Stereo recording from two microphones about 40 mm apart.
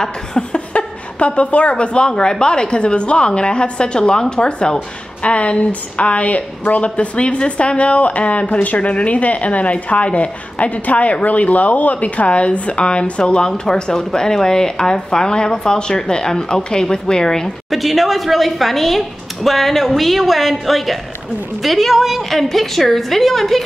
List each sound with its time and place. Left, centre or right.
0.0 s speech: centre
0.5 s speech: left
17.6 s a woman's voice: centre
22.4 s a woman's voice: centre